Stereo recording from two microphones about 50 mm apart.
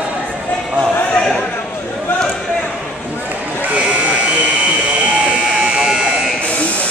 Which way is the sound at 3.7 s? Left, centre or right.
Right.